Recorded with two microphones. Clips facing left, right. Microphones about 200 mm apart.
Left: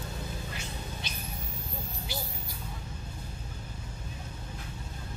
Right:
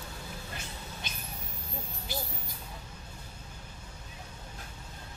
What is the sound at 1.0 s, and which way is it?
Vehicle, 50° right (ahead or behind).